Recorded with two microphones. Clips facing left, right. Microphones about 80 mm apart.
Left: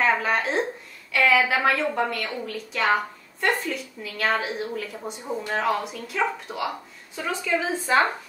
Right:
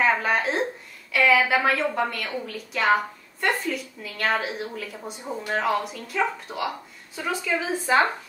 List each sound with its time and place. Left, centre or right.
0.0 s a woman's voice: centre
7.8 s a woman's voice: right